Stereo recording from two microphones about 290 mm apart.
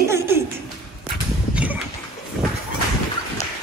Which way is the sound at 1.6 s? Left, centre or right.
Centre.